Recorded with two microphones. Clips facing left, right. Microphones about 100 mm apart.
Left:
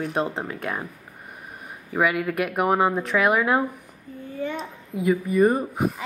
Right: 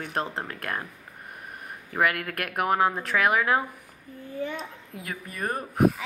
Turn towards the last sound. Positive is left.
turn(degrees=0)  # may be behind; listen again after turning